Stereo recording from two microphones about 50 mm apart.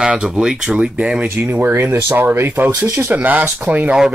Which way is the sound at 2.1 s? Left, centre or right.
Right.